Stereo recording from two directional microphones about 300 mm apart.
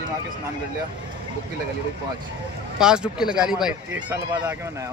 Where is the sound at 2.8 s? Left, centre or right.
Centre.